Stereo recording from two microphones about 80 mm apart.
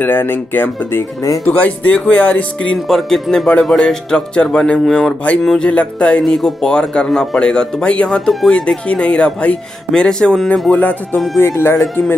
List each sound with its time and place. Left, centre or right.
0.0 s speech: left
2.9 s speech: centre
10.7 s speech: centre
11.3 s speech: left